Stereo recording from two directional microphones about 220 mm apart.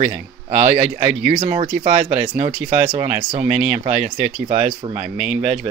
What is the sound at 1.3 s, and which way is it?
Speech, 30° right (ahead or behind).